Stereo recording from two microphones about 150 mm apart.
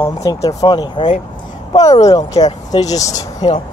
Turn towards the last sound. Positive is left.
turn(degrees=25)  # may be behind; listen again after turning